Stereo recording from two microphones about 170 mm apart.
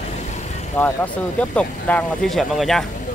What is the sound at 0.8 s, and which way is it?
Speech, 10° left (ahead or behind).